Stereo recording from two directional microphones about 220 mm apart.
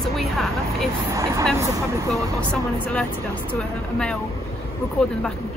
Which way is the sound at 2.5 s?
5° left (ahead or behind).